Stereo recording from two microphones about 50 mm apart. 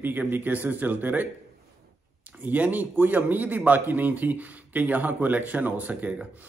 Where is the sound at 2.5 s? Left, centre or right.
Right.